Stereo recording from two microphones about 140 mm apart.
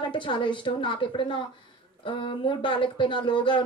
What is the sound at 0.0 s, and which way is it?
A woman's voice, 35° left (ahead or behind).